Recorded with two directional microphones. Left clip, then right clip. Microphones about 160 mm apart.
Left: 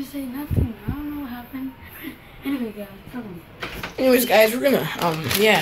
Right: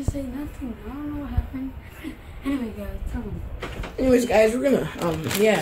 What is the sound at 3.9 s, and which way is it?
Speech, 5° left (ahead or behind).